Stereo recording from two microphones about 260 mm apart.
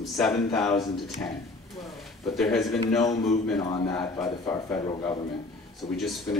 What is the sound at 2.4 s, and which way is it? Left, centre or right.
Speech, centre.